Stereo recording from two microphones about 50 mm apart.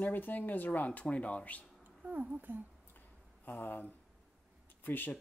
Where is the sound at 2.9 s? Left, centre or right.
Left.